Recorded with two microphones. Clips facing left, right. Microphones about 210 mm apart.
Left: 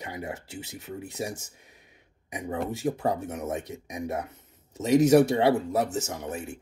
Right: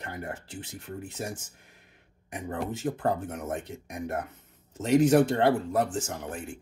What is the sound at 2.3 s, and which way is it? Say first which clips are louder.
Speech: left 2 dB; 10° left (ahead or behind).